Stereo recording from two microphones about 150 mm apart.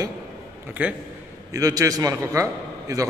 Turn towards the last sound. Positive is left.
turn(degrees=-20)  # may be behind; listen again after turning